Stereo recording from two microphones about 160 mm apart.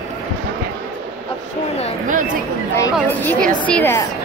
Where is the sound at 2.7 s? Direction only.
15° left (ahead or behind).